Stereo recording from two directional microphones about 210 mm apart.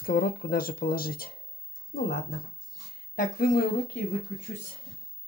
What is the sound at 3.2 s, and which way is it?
Speech, 45° left (ahead or behind).